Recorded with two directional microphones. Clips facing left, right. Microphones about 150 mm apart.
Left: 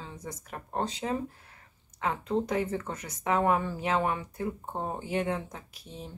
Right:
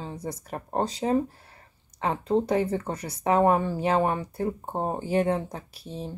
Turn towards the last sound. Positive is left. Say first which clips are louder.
# right 7 dB
turn(degrees=-35)  # may be behind; listen again after turning